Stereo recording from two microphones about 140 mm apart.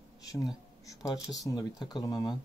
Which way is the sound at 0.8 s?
25° left (ahead or behind).